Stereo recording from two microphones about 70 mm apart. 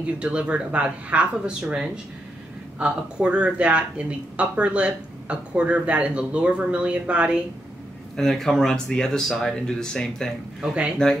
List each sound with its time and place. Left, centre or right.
0.0 s speech: centre
8.2 s speech: centre
10.7 s speech: centre